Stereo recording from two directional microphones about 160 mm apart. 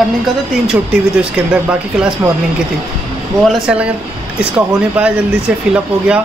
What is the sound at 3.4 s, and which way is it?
Speech, centre (ahead or behind).